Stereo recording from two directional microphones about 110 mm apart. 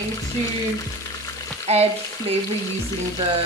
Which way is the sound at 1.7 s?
70° right (ahead or behind).